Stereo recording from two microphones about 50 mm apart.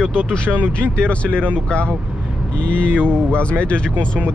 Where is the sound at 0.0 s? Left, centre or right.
Centre.